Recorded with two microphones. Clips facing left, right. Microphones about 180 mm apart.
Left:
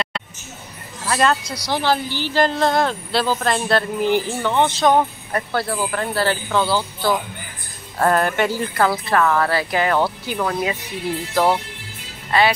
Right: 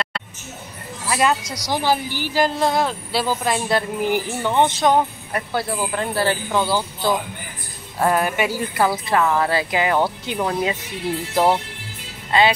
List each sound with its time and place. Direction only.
1.0 s speech: 10° right (ahead or behind)